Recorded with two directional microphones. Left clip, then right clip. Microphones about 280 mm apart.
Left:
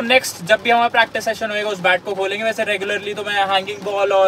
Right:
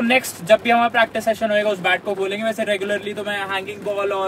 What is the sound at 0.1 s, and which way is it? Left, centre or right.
Speech, centre.